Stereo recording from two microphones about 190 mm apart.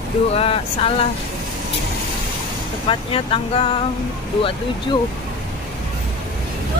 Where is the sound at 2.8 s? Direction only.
30° left (ahead or behind).